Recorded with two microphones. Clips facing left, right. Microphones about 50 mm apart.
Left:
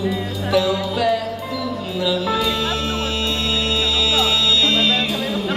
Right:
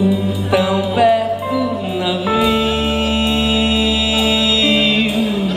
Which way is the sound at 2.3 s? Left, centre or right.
Right.